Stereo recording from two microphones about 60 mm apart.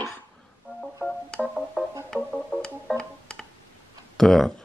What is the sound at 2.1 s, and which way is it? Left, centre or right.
Organ, centre.